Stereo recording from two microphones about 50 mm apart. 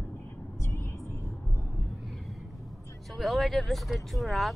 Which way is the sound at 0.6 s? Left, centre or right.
Left.